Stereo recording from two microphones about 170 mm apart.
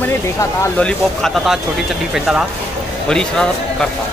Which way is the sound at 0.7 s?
5° left (ahead or behind).